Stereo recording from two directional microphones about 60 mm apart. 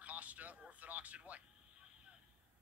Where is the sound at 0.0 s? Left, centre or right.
Right.